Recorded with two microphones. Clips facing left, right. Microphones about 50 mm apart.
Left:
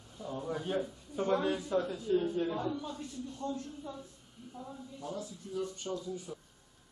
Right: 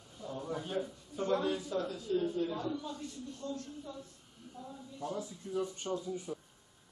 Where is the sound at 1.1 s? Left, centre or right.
Left.